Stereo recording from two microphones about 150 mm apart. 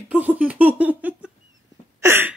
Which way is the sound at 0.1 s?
10° right (ahead or behind).